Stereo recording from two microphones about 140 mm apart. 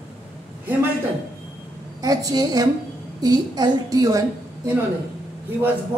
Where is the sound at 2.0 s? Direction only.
25° right (ahead or behind).